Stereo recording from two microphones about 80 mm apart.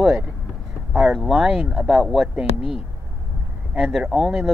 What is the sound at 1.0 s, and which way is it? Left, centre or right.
Speech, centre.